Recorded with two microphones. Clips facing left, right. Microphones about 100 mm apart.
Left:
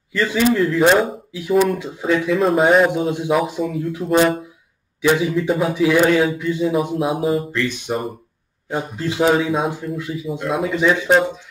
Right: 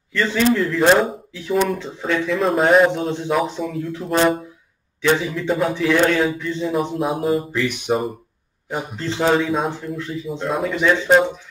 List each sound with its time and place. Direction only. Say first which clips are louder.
0.1 s a man's voice: left 1 dB; 5° left (ahead or behind)
7.5 s speech: even; 15° right (ahead or behind)
8.9 s a man's voice: left 1 dB; 10° left (ahead or behind)